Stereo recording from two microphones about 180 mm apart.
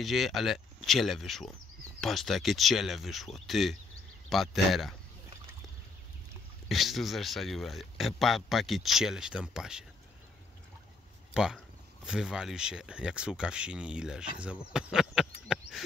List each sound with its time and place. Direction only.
0.0 s speech: centre (ahead or behind)
6.7 s speech: centre (ahead or behind)
11.3 s speech: 5° right (ahead or behind)
14.7 s a sound: 5° right (ahead or behind)